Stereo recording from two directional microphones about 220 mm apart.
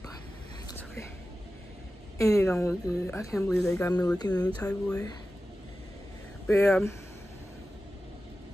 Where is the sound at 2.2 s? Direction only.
15° left (ahead or behind).